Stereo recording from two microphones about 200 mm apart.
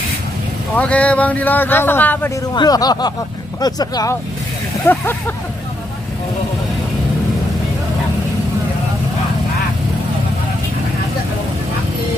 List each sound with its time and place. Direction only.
0.7 s speech: 5° left (ahead or behind)
2.5 s speech: 20° left (ahead or behind)